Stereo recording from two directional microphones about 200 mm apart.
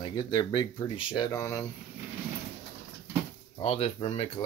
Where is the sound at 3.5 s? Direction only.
30° left (ahead or behind).